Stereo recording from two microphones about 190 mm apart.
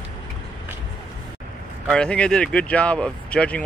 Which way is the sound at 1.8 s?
5° left (ahead or behind).